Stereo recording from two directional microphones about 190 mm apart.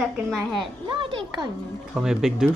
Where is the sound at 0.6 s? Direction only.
25° right (ahead or behind).